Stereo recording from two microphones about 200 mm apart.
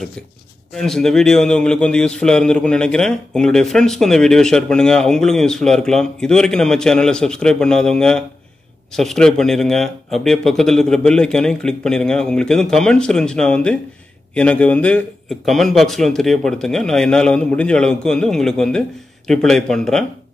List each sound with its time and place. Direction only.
0.7 s a man's voice: centre (ahead or behind)